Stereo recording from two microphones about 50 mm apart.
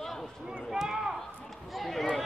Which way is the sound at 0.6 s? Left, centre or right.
Centre.